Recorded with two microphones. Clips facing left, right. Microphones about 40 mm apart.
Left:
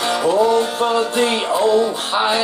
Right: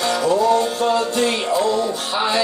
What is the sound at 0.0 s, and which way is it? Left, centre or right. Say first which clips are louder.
Music: left 2 dB; left.